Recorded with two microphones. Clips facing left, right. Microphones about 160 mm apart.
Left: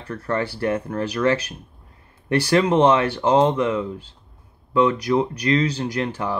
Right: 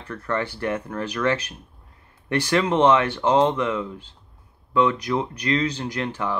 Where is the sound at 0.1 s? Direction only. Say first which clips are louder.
Left 2 dB; 35° left (ahead or behind).